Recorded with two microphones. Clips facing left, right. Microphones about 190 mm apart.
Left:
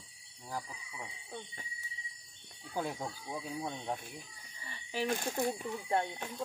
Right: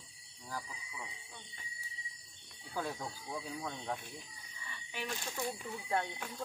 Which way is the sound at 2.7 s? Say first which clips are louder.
Left 2 dB; 15° left (ahead or behind).